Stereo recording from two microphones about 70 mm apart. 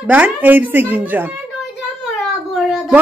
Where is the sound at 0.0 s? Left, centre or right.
Centre.